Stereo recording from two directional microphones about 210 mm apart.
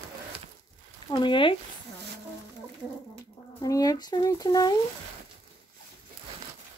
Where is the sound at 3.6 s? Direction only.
15° left (ahead or behind).